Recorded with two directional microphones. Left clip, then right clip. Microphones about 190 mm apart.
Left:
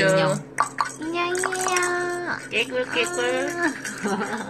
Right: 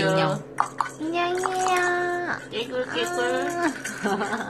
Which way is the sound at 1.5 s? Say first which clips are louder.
Right 1 dB; centre (ahead or behind).